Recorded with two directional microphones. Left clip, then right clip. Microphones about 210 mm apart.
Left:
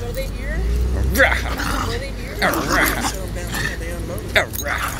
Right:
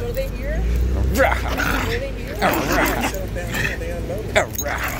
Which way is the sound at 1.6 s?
25° right (ahead or behind).